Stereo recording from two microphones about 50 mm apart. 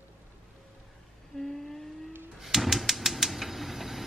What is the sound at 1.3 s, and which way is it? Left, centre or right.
Humming, centre.